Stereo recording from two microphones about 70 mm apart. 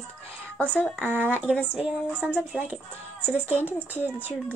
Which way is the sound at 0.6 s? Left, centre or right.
Centre.